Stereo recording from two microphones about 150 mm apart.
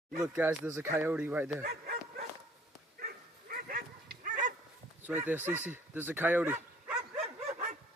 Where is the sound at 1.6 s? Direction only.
90° right.